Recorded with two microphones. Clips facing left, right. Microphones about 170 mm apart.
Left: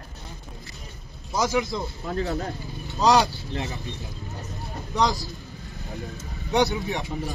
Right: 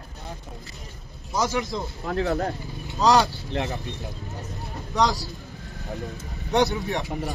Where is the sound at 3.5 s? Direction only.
60° right (ahead or behind).